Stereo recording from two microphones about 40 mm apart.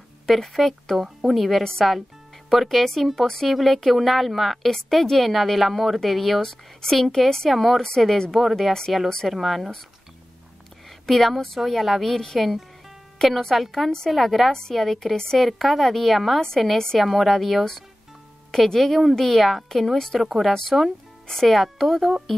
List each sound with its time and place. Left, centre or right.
0.3 s a woman's voice: centre
1.6 s a woman's voice: centre
2.6 s a woman's voice: centre
7.4 s a woman's voice: centre
10.9 s a woman's voice: centre
16.3 s a woman's voice: centre
17.0 s a woman's voice: centre